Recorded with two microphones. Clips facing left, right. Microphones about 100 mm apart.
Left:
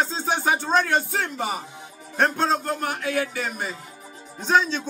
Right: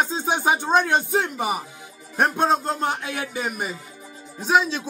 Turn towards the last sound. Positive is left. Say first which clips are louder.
# right 1 dB
turn(degrees=-5)  # may be behind; listen again after turning